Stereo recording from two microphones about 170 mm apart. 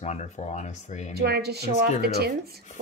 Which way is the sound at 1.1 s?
70° right (ahead or behind).